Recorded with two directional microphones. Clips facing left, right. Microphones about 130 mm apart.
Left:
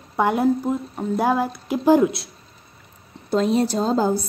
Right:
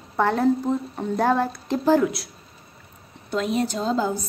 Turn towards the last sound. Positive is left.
turn(degrees=40)  # may be behind; listen again after turning